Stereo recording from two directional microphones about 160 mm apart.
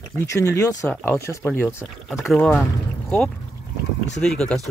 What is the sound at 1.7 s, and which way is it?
Speech, 5° right (ahead or behind).